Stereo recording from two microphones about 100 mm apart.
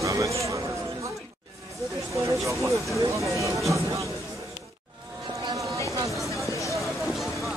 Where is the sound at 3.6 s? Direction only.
30° right (ahead or behind).